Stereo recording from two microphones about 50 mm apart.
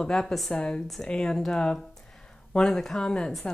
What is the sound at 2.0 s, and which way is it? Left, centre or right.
Speech, centre.